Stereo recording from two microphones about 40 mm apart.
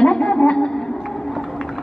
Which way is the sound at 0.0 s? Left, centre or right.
Centre.